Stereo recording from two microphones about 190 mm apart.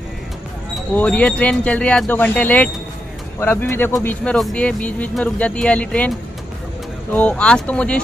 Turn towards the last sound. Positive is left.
turn(degrees=5)  # may be behind; listen again after turning